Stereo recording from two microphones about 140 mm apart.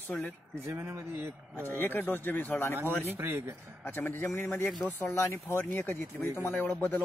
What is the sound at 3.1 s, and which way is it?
Speech, 15° right (ahead or behind).